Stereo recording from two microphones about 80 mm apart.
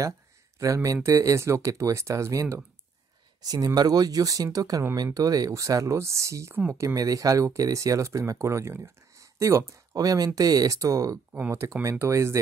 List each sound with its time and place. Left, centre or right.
0.6 s speech: right
3.4 s speech: right
9.9 s speech: right